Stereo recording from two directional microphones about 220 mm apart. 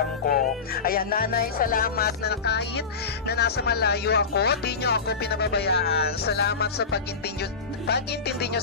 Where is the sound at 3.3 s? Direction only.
45° left (ahead or behind).